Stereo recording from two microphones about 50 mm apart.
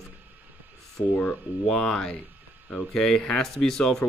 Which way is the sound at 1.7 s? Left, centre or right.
Centre.